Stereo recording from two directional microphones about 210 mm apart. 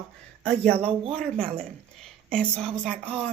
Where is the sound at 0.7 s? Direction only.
30° right (ahead or behind).